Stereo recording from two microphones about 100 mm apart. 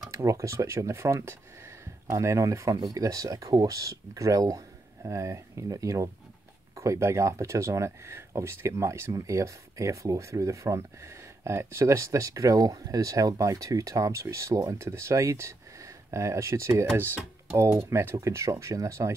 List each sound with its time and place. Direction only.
0.1 s speech: 30° right (ahead or behind)